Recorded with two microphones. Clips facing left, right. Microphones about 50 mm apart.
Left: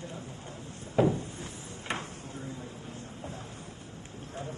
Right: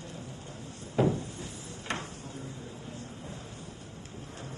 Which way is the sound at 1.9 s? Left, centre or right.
Centre.